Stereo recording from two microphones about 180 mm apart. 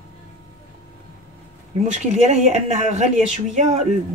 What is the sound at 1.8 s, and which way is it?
Speech, 40° right (ahead or behind).